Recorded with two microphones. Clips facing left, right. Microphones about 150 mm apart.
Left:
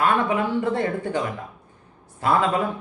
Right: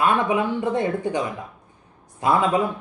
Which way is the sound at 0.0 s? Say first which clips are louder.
Right 1 dB; 15° right (ahead or behind).